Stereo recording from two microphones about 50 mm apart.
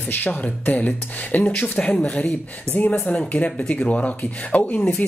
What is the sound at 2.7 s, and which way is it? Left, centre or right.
Speech, left.